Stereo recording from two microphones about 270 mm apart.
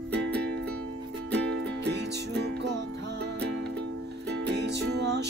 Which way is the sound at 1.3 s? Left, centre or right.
Right.